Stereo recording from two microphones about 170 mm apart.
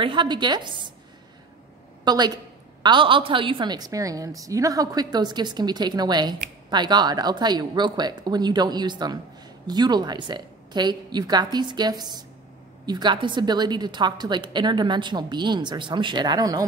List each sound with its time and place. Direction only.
0.0 s a woman's voice: 30° right (ahead or behind)
2.0 s a woman's voice: 25° right (ahead or behind)